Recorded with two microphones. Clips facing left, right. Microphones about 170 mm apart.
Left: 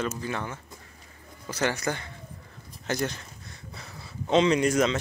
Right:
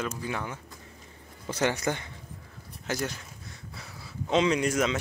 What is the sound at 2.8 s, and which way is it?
Speech, 5° right (ahead or behind).